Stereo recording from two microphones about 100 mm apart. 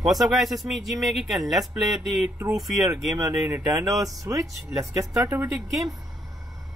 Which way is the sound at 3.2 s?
25° right (ahead or behind).